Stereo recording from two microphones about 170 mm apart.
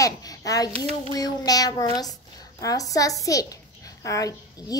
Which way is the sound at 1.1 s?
20° left (ahead or behind).